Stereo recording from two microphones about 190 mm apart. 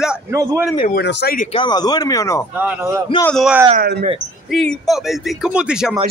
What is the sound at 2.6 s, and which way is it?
Speech, 15° right (ahead or behind).